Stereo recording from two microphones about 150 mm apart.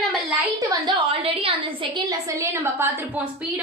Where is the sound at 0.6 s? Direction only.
35° right (ahead or behind).